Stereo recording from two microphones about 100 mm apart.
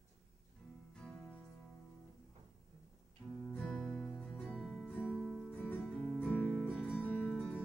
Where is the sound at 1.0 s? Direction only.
10° left (ahead or behind).